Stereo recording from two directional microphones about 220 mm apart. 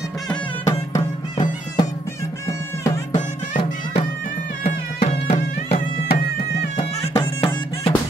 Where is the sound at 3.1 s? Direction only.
35° left (ahead or behind).